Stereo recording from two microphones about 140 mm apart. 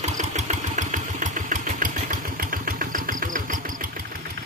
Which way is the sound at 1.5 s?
75° right (ahead or behind).